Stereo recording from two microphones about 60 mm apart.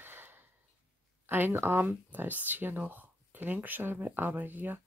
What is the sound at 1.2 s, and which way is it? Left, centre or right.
Speech, right.